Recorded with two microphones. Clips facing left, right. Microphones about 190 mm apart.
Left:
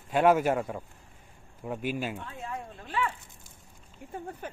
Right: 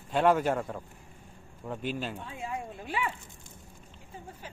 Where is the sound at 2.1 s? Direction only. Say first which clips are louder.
Right 1 dB; 10° right (ahead or behind).